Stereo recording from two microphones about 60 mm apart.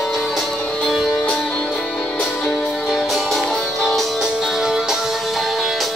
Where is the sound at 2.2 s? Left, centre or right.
Centre.